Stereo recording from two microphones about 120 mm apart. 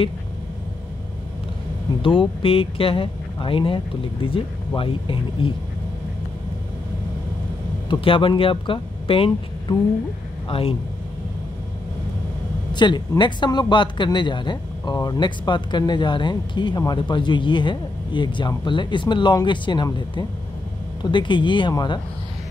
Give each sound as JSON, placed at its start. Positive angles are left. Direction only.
{"t": 2.0, "sound": "speech", "side_deg": 45}
{"t": 7.9, "sound": "speech", "side_deg": 45}
{"t": 12.7, "sound": "speech", "side_deg": 40}